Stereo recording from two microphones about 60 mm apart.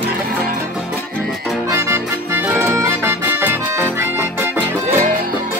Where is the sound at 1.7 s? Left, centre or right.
Right.